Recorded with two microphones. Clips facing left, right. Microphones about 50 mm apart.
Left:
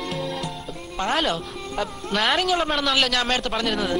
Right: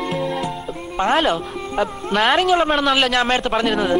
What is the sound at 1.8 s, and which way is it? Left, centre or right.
Speech, right.